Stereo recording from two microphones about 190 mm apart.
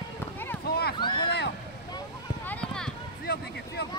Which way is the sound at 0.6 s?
55° left (ahead or behind).